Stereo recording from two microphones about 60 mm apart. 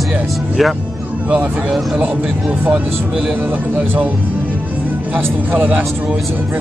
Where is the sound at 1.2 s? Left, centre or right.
Right.